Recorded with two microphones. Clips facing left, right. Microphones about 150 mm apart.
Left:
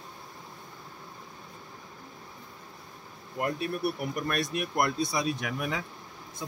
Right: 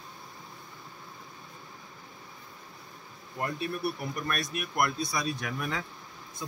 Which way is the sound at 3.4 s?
15° left (ahead or behind).